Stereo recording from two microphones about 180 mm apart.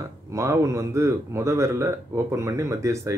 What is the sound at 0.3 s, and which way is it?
Speech, 15° right (ahead or behind).